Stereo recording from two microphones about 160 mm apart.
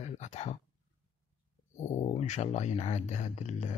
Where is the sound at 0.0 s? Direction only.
45° left (ahead or behind).